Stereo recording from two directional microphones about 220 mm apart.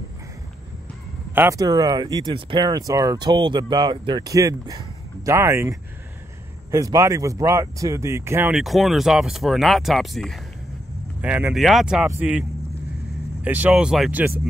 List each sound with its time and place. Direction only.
1.3 s speech: 10° right (ahead or behind)